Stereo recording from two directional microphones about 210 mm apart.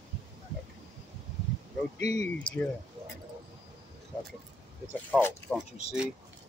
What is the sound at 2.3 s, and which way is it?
Speech, 5° left (ahead or behind).